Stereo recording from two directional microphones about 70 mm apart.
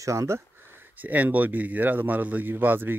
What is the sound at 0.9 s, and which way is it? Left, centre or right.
A man's voice, right.